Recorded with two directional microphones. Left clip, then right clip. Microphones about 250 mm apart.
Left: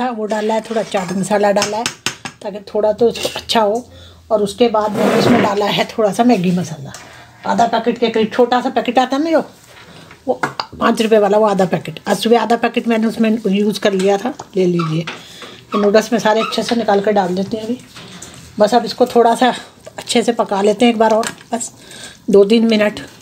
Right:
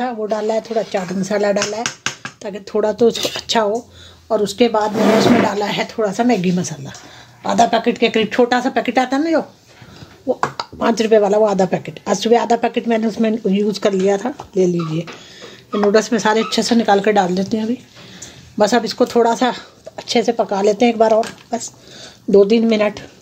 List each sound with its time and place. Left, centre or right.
0.0 s speech: centre
2.4 s speech: centre
3.3 s speech: centre
4.3 s speech: centre
5.5 s speech: centre
7.4 s speech: centre
22.3 s speech: centre